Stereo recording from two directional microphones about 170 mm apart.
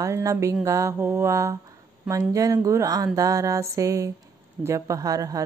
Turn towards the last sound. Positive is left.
turn(degrees=-20)  # may be behind; listen again after turning